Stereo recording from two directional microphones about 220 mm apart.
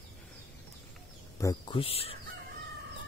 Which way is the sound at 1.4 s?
20° left (ahead or behind).